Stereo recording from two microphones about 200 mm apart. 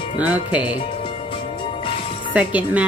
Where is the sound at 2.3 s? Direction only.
5° right (ahead or behind).